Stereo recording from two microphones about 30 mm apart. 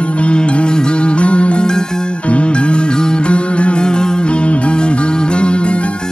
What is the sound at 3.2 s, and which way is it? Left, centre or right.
Music, left.